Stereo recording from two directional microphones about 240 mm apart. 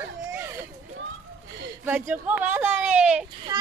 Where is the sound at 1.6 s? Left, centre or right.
Centre.